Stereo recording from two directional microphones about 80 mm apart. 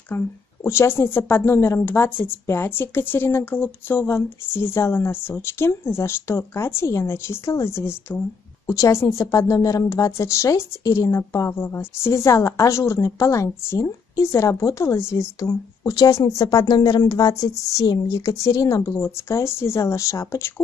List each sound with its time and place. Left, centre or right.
0.1 s speech: left
15.8 s speech: left
16.6 s speech: left